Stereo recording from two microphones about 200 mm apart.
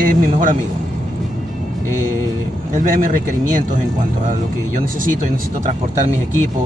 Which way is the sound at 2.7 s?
40° right (ahead or behind).